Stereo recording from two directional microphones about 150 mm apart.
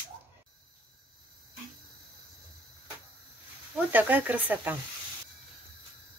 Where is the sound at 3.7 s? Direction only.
10° right (ahead or behind).